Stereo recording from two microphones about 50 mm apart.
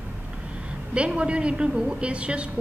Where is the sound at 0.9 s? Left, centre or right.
Right.